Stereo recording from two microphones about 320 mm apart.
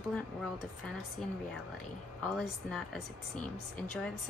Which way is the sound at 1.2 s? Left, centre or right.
Centre.